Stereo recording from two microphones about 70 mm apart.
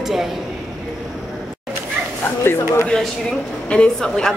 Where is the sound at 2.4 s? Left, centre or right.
Left.